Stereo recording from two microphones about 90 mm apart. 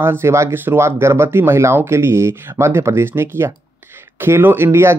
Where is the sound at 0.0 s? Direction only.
30° right (ahead or behind).